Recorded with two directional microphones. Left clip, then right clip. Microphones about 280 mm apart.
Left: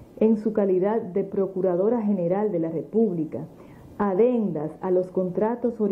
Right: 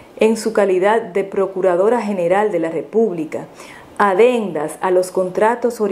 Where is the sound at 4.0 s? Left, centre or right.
Centre.